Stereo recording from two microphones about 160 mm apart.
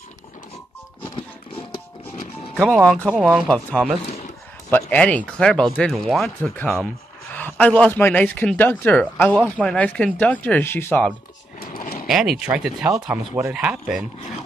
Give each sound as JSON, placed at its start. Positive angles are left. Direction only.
{"t": 2.5, "sound": "speech", "side_deg": 5}
{"t": 11.6, "sound": "a sound", "side_deg": 60}
{"t": 12.1, "sound": "speech", "side_deg": -5}